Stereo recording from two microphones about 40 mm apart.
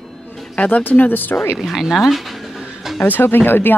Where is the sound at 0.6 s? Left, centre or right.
Left.